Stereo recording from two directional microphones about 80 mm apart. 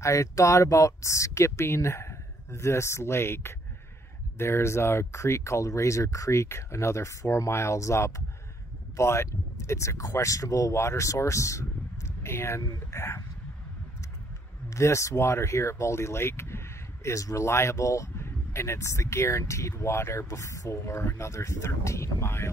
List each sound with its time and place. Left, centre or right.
0.0 s speech: left
14.7 s speech: left